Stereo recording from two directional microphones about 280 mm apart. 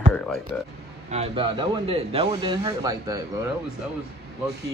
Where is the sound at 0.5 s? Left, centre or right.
Centre.